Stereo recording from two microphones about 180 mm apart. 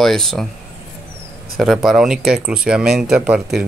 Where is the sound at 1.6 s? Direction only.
Centre (ahead or behind).